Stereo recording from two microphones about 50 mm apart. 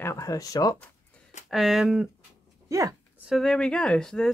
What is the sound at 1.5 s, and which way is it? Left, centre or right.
Speech, centre.